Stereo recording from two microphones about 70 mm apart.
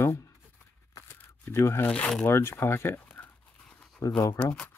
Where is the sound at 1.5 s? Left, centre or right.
Left.